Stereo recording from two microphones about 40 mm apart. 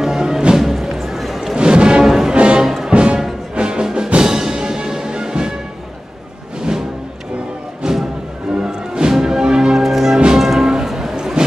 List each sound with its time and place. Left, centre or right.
0.0 s music: centre
1.6 s music: right
2.3 s music: right
2.6 s music: centre
2.9 s music: right
7.8 s music: centre
10.7 s music: centre